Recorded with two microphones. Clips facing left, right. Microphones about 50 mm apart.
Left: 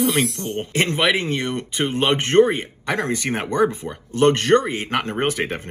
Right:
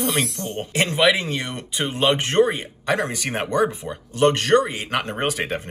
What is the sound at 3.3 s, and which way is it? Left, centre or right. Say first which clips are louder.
Speech: even; right.